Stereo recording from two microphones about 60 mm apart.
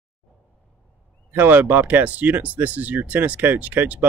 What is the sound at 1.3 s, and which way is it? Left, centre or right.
Speech, right.